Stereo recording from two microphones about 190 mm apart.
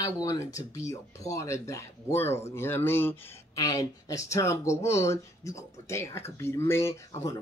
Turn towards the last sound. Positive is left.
turn(degrees=20)  # may be behind; listen again after turning